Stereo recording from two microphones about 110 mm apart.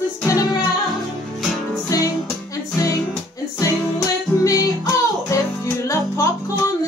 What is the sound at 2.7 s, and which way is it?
Music, 30° left (ahead or behind).